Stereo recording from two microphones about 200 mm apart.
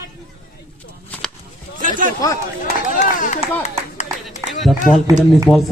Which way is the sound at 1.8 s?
40° right (ahead or behind).